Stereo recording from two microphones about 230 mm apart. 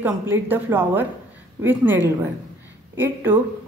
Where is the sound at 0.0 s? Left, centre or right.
Centre.